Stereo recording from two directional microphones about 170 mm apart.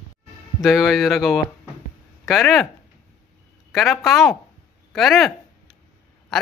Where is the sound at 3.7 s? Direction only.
Centre (ahead or behind).